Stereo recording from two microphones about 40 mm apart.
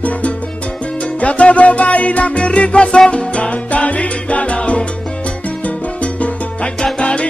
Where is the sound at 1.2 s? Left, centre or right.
Left.